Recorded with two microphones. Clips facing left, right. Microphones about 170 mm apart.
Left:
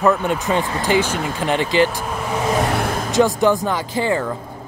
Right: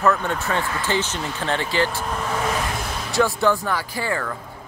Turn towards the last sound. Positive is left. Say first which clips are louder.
# left 6 dB
turn(degrees=20)  # may be behind; listen again after turning